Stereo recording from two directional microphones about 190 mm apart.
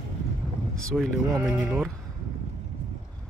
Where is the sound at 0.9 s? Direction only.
Centre (ahead or behind).